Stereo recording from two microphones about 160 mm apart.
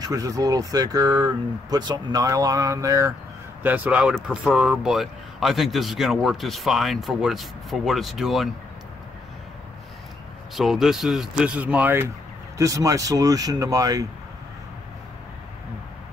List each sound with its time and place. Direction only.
0.0 s speech: 20° right (ahead or behind)
3.6 s speech: 10° right (ahead or behind)
10.5 s speech: centre (ahead or behind); by 14.0 s 20° right (ahead or behind)